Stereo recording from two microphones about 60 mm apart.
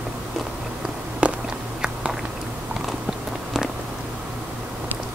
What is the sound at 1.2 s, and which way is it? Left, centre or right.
Walk, centre.